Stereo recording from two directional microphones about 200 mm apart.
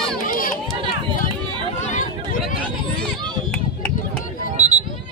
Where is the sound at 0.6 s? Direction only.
25° right (ahead or behind).